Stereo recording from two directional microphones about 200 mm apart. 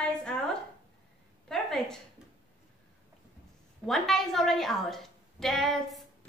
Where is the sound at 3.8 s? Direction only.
Centre (ahead or behind).